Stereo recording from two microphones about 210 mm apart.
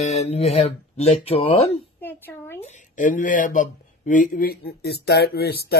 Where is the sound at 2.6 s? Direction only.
35° left (ahead or behind).